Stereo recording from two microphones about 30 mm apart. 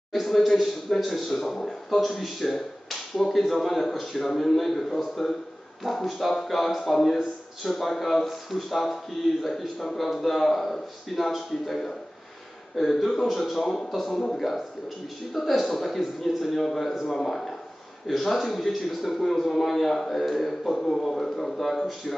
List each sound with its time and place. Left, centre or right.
0.1 s speech: centre
14.1 s speech: centre
15.3 s speech: centre
20.9 s speech: centre